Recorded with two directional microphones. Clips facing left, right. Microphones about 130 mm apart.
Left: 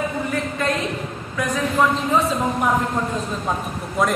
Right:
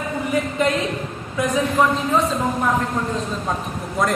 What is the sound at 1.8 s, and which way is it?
Speech, 10° right (ahead or behind).